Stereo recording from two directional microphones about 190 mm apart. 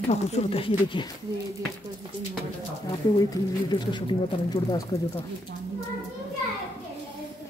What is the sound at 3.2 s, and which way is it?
Speech, 20° left (ahead or behind).